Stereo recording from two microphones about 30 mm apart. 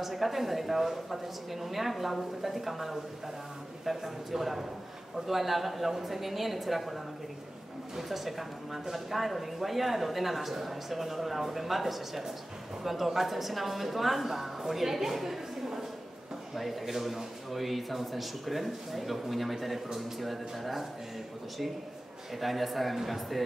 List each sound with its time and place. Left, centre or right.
0.0 s a man's voice: centre
15.1 s a sound: centre
16.5 s a man's voice: centre
22.3 s a man's voice: centre